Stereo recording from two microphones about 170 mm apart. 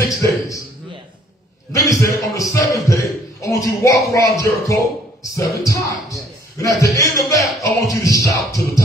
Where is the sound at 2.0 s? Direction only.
20° left (ahead or behind).